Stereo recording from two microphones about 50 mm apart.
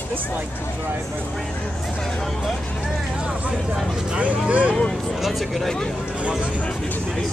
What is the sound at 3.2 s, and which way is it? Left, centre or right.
Speech, centre.